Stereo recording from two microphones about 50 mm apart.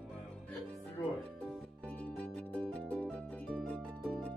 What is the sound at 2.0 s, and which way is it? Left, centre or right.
Music, left.